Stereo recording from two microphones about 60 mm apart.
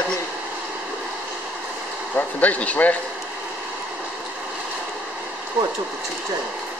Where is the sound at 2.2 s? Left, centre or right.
Left.